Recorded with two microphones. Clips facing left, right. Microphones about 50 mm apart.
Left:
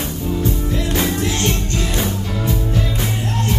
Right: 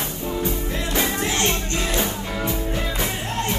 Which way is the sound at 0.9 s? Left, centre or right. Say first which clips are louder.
Left 2 dB; right.